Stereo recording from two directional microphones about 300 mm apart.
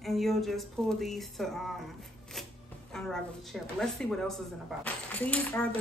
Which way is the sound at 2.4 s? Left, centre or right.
Centre.